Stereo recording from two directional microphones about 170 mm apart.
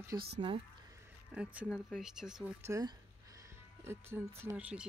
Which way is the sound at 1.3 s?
5° right (ahead or behind).